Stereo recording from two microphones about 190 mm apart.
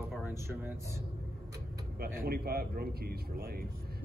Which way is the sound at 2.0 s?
55° right (ahead or behind).